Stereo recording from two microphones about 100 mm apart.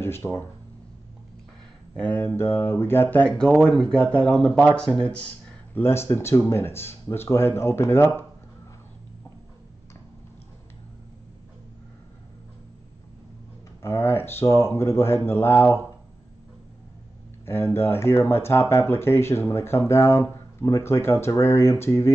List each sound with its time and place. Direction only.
0.0 s speech: 25° left (ahead or behind)
2.0 s speech: 15° left (ahead or behind)
5.8 s speech: 25° left (ahead or behind)
13.8 s speech: 25° left (ahead or behind)
17.5 s speech: 25° left (ahead or behind)